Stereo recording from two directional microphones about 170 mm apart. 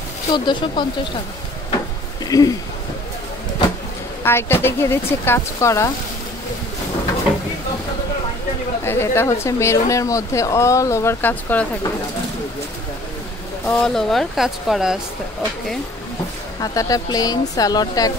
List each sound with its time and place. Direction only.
0.3 s speech: 25° left (ahead or behind)
2.2 s speech: 20° left (ahead or behind)
4.2 s speech: 15° left (ahead or behind)
8.8 s speech: 15° left (ahead or behind)
13.7 s speech: 5° left (ahead or behind)
16.5 s speech: 20° left (ahead or behind)